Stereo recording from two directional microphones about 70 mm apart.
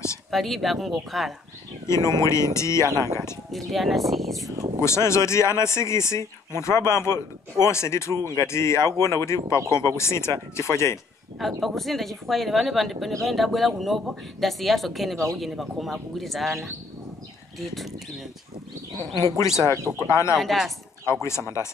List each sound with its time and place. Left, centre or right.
0.3 s speech: centre
2.0 s speech: left
3.5 s speech: centre
4.7 s speech: left
11.3 s speech: centre
19.1 s speech: left
19.7 s speech: right
20.0 s speech: left
20.3 s speech: centre
21.1 s speech: left